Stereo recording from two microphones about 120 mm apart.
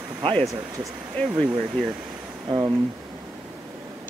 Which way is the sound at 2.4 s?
35° right (ahead or behind).